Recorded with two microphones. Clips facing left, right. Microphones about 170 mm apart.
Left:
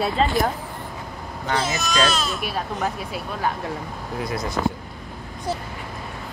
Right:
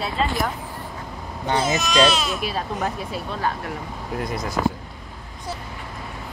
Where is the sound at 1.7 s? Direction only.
10° right (ahead or behind).